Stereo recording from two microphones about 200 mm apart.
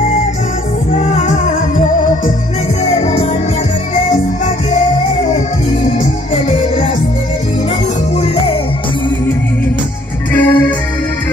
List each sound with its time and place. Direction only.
0.9 s music: 35° left (ahead or behind)
4.7 s music: 35° left (ahead or behind)
10.3 s music: 10° left (ahead or behind)